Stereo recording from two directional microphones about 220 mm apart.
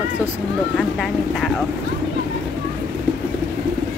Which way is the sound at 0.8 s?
Centre (ahead or behind).